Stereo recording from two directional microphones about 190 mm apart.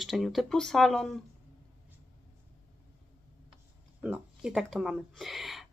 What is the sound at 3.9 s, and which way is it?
Speech, 5° right (ahead or behind).